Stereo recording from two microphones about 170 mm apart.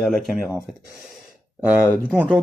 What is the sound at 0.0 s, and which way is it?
Speech, centre (ahead or behind).